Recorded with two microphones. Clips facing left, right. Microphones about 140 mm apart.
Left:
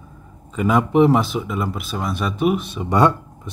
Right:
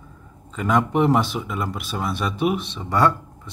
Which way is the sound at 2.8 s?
20° left (ahead or behind).